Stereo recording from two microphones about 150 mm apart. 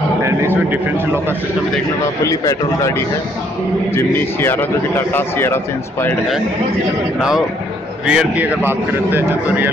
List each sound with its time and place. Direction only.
0.2 s speech: 15° right (ahead or behind)
3.9 s a man's voice: 15° left (ahead or behind)
7.2 s speech: 5° right (ahead or behind)